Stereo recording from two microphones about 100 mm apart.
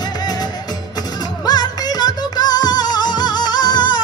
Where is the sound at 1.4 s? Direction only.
40° left (ahead or behind).